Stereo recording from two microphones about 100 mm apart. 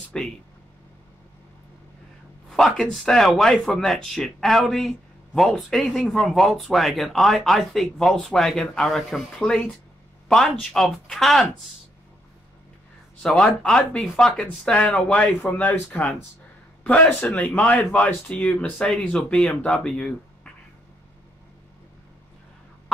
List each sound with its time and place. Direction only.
0.1 s speech: 10° left (ahead or behind)
2.5 s speech: 5° left (ahead or behind)
13.2 s speech: 5° left (ahead or behind)